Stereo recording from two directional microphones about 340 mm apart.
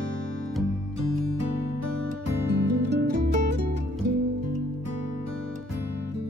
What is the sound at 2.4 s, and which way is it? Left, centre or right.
Music, right.